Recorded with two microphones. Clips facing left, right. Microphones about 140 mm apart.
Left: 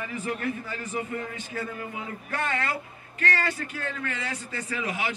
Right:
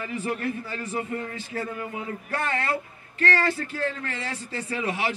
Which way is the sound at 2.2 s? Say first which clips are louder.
Right 2 dB; 30° right (ahead or behind).